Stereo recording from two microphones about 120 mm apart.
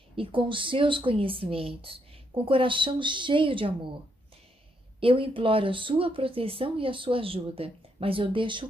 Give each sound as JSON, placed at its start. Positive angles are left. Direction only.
{"t": 0.1, "sound": "a woman's voice", "side_deg": -45}
{"t": 5.0, "sound": "a woman's voice", "side_deg": -50}